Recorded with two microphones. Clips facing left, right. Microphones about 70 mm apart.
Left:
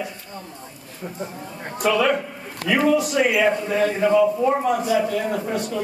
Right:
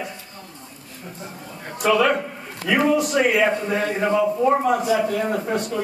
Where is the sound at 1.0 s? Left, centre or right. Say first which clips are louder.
Left 5 dB; left.